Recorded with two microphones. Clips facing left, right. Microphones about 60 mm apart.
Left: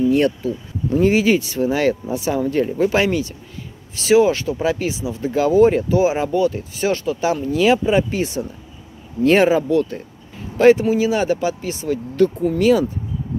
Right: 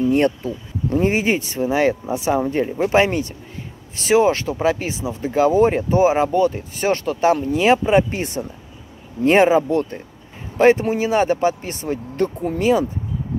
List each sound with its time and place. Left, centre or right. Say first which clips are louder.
0.1 s speech: left 1 dB; right
7.5 s speech: left 3 dB; right